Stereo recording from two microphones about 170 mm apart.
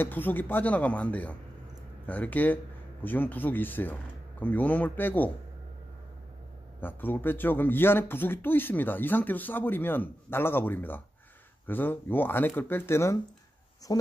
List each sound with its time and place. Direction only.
0.0 s speech: 10° left (ahead or behind)
6.8 s speech: 10° left (ahead or behind)